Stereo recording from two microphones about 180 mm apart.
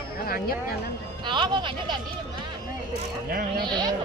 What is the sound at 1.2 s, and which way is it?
Speech, 25° right (ahead or behind).